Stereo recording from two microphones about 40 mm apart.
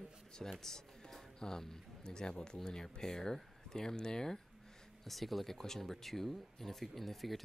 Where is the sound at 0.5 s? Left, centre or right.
Centre.